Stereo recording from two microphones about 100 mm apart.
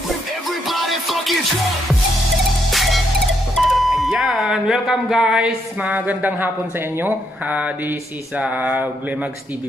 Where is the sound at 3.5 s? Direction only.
Centre (ahead or behind).